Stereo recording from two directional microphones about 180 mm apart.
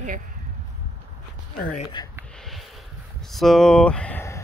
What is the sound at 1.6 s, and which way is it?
Speech, 45° left (ahead or behind).